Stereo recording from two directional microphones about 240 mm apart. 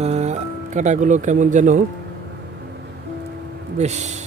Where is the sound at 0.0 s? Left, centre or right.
Right.